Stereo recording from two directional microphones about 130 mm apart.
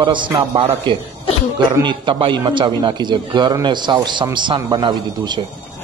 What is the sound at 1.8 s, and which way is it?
A man's voice, 40° right (ahead or behind).